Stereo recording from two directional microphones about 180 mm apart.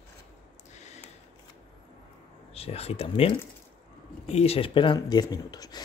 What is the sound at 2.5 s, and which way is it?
Speech, 35° left (ahead or behind).